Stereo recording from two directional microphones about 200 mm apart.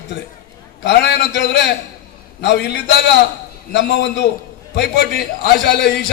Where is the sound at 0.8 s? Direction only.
55° left (ahead or behind).